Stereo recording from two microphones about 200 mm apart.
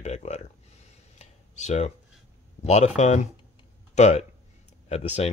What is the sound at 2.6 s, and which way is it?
Speech, 30° left (ahead or behind).